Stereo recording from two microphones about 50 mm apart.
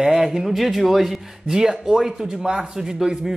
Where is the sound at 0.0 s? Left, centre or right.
Centre.